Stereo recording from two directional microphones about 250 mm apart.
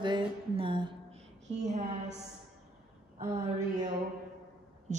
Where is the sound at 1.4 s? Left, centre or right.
Right.